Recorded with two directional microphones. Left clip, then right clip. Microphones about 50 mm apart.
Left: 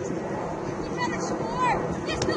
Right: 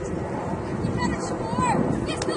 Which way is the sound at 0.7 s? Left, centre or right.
Left.